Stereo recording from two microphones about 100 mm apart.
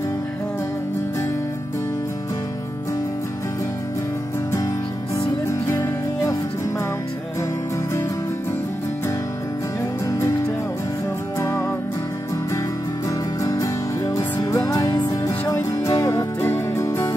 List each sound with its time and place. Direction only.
5.5 s music: 30° left (ahead or behind)
11.3 s music: 30° left (ahead or behind)
13.4 s music: 35° left (ahead or behind)
15.0 s music: 30° left (ahead or behind)
16.3 s music: 25° left (ahead or behind)